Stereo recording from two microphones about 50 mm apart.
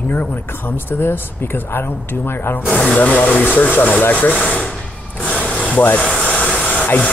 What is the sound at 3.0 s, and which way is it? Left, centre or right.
Speech, left.